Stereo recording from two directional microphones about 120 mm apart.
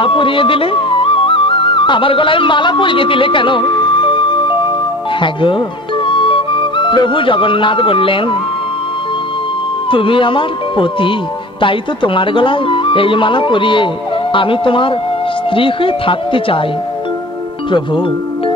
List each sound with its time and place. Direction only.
0.0 s speech: 45° left (ahead or behind)
9.8 s speech: 45° left (ahead or behind)
17.6 s speech: 40° left (ahead or behind)